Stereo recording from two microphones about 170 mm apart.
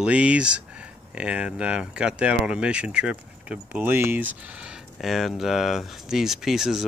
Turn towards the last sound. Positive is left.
turn(degrees=0)  # may be behind; listen again after turning